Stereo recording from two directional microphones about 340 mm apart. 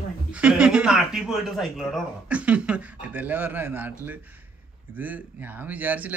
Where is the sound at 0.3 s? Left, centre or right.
Centre.